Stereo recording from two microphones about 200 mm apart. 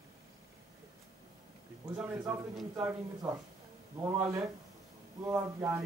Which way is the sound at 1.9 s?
10° right (ahead or behind).